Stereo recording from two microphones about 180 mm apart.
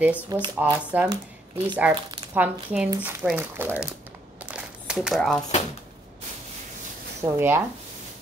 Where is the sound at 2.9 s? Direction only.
5° right (ahead or behind).